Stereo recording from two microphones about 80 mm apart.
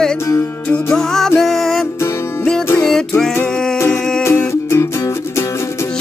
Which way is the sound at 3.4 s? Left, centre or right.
Left.